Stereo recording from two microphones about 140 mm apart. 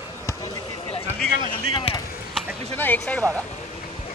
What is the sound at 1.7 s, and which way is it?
Speech, 35° left (ahead or behind).